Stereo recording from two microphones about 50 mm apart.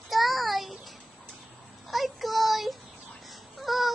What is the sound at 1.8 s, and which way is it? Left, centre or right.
Child singing, centre.